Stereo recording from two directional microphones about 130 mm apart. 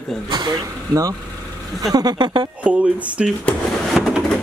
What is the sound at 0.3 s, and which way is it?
Speech, 30° right (ahead or behind).